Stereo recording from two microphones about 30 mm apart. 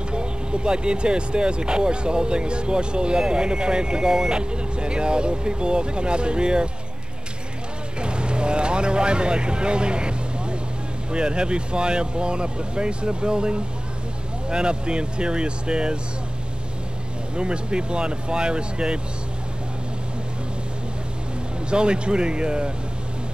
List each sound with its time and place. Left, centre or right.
0.1 s speech: right
4.4 s speech: right
8.0 s speech: right
17.4 s speech: right
21.6 s speech: right